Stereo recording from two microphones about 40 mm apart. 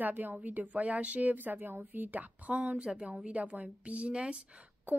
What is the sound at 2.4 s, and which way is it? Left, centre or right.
A woman's voice, right.